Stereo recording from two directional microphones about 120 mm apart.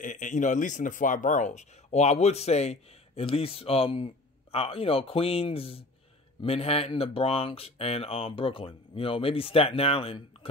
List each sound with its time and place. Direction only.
0.0 s a man's voice: 90° left; by 10.5 s 50° left (ahead or behind)